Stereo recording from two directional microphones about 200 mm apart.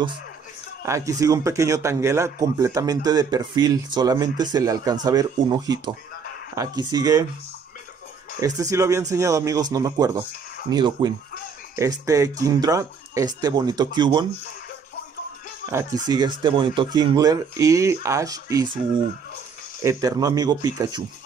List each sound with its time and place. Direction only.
0.8 s a man's voice: 15° right (ahead or behind)
8.4 s a man's voice: 15° right (ahead or behind)
16.1 s speech: 20° right (ahead or behind)
19.8 s a man's voice: 15° right (ahead or behind)